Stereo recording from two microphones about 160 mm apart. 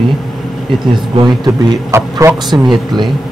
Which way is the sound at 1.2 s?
20° right (ahead or behind).